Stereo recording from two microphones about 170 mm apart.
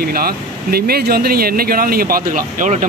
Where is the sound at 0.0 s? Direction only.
65° right (ahead or behind).